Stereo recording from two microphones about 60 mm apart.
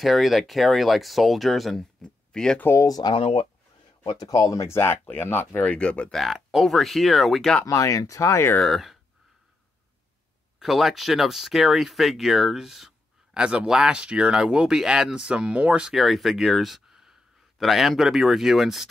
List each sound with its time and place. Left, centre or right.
0.0 s speech: centre
2.0 s a sound: centre
4.2 s speech: left
4.6 s speech: left
5.6 s speech: centre
6.1 s speech: centre
7.6 s speech: left
8.6 s speech: centre
10.6 s speech: centre; by 15.9 s right
15.9 s speech: centre